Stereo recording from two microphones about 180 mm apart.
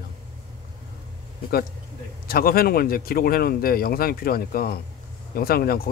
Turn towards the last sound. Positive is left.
turn(degrees=55)  # may be behind; listen again after turning